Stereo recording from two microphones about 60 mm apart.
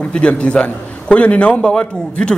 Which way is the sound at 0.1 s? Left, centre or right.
Left.